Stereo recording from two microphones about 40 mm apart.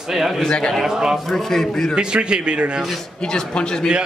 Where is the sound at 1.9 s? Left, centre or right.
Right.